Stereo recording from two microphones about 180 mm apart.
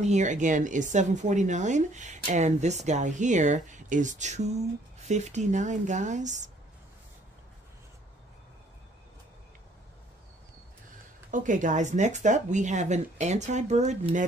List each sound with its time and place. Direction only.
0.0 s a woman's voice: 40° right (ahead or behind)
11.2 s a woman's voice: 45° right (ahead or behind)